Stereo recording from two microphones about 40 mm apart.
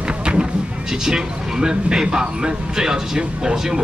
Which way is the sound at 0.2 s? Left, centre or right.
Right.